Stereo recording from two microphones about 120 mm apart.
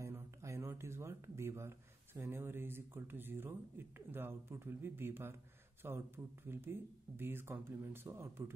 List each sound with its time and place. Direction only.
0.0 s speech: 25° right (ahead or behind)